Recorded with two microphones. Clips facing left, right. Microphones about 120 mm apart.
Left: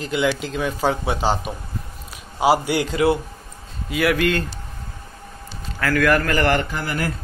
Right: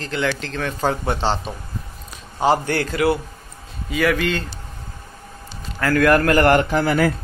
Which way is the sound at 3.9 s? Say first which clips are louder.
Even; 5° left (ahead or behind).